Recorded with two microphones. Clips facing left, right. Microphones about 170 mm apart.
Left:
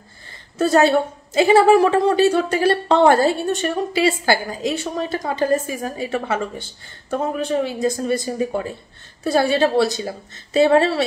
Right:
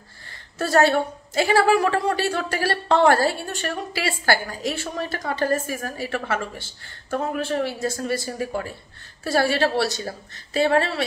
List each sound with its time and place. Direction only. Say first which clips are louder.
0.6 s a woman's voice: left 4 dB; 20° left (ahead or behind)